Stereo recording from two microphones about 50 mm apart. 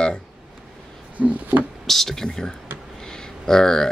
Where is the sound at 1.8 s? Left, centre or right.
Centre.